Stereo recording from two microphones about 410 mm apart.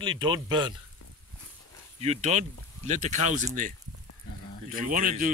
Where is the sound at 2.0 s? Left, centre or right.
Centre.